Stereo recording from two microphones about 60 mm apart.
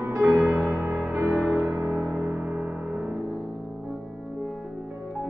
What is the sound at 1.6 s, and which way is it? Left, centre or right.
Music, right.